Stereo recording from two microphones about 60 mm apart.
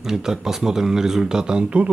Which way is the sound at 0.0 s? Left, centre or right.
Centre.